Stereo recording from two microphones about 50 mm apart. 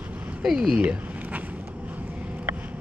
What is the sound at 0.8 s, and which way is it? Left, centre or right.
Speech, right.